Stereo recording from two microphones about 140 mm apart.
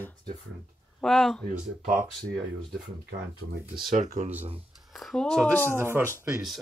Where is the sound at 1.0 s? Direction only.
Centre (ahead or behind).